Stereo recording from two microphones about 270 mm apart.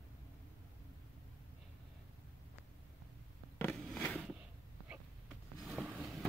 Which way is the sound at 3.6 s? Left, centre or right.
Centre.